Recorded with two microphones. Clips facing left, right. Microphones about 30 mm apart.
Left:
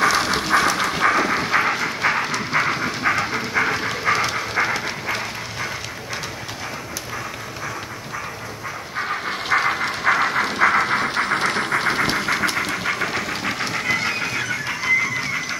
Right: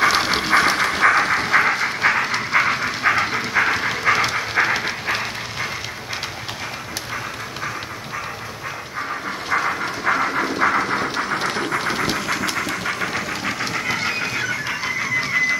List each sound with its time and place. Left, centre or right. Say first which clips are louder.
0.0 s train: right 1 dB; centre
1.1 s vehicle: right 2 dB; right
2.5 s dog: right 2 dB; right
3.1 s train: right 3 dB; right
4.0 s train: right 2 dB; right
4.6 s dog: right 2 dB; right
9.7 s a sound: left 2 dB; left
12.7 s train: left 1 dB; centre